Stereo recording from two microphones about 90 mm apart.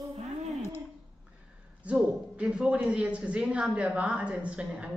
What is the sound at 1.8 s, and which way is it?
A woman's voice, 10° right (ahead or behind).